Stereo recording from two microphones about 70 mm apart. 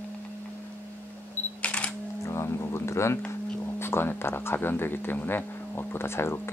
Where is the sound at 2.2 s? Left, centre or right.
Left.